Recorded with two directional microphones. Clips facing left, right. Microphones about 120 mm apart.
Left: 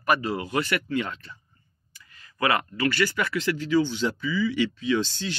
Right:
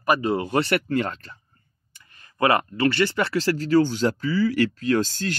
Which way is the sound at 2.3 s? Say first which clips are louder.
Right 4 dB; 25° right (ahead or behind).